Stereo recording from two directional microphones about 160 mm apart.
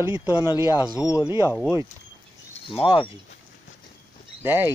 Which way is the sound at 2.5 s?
35° left (ahead or behind).